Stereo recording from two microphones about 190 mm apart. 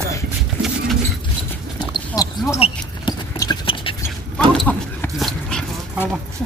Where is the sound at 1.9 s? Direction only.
20° left (ahead or behind).